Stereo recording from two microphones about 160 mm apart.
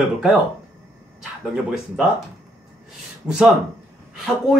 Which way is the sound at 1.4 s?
5° right (ahead or behind).